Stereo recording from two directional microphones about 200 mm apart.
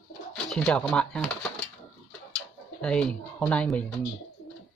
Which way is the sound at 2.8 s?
5° left (ahead or behind).